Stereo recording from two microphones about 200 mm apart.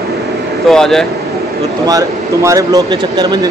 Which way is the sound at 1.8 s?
15° right (ahead or behind).